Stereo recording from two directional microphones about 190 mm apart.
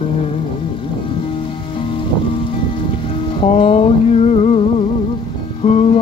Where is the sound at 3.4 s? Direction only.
30° left (ahead or behind).